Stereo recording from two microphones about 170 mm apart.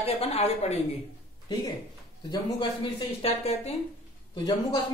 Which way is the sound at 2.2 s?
30° left (ahead or behind).